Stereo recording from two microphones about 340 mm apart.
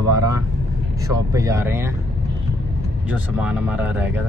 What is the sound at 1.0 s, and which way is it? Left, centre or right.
Speech, centre.